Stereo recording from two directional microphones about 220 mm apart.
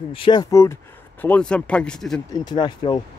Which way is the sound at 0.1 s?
20° left (ahead or behind).